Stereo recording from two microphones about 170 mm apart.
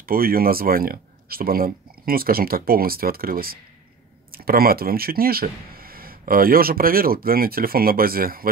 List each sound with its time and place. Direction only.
0.0 s speech: 60° right (ahead or behind)